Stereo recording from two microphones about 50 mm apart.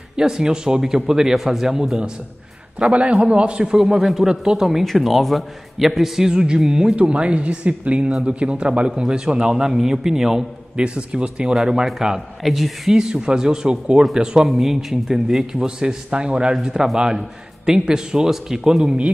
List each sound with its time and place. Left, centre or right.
0.1 s speech: centre
3.1 s speech: right
3.7 s a man's voice: centre
10.8 s speech: centre
12.9 s speech: centre